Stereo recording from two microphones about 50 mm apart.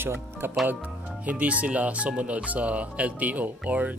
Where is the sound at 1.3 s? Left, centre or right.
Right.